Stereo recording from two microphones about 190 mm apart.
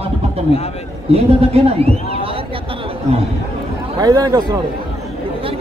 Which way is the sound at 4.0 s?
20° right (ahead or behind).